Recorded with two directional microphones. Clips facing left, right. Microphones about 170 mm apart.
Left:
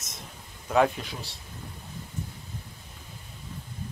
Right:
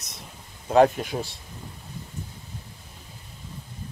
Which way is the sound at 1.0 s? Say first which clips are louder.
Right 9 dB; 50° right (ahead or behind).